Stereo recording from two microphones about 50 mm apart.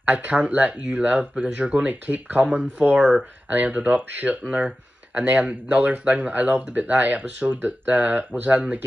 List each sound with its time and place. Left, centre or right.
0.0 s speech: right
1.9 s speech: right; by 3.3 s centre
3.4 s speech: right